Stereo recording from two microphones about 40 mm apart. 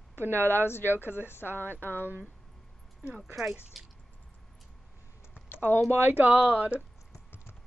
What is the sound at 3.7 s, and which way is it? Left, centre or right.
Speech, centre.